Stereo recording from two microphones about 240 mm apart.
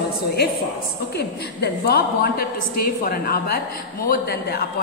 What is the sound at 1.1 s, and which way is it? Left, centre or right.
A woman's voice, left.